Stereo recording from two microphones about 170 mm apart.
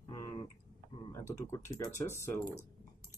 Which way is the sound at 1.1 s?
15° left (ahead or behind).